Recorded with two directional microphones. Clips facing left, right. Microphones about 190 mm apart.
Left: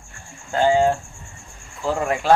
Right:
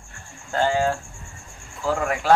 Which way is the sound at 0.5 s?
20° left (ahead or behind).